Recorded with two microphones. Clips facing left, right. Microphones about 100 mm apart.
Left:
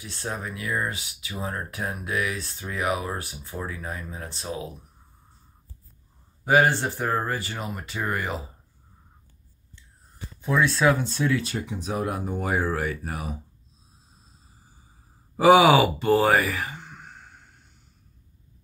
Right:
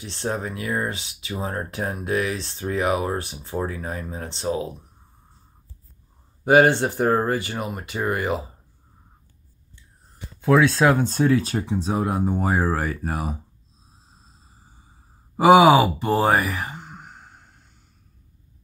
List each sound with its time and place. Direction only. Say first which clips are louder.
0.0 s speech: right 5 dB; 25° right (ahead or behind)
3.5 s speech: right 6 dB; 40° right (ahead or behind)
7.1 s speech: right 6 dB; 40° right (ahead or behind)
7.4 s speech: right 4 dB; 20° right (ahead or behind)
10.4 s speech: right 6 dB; 75° right (ahead or behind)
10.9 s speech: right 4 dB; 50° right (ahead or behind); by 13.4 s 35° right (ahead or behind)
15.3 s speech: right 3 dB; 20° right (ahead or behind)
16.7 s a sound: right 3 dB; 40° right (ahead or behind)